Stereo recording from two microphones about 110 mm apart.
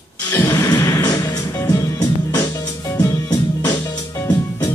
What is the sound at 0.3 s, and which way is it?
Music, 30° left (ahead or behind).